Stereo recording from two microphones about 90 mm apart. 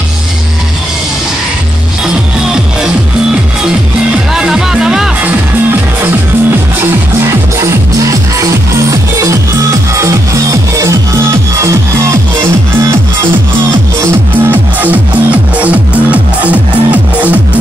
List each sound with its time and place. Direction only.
4.3 s music: 5° right (ahead or behind)
6.8 s music: 30° right (ahead or behind)
14.0 s music: 20° right (ahead or behind)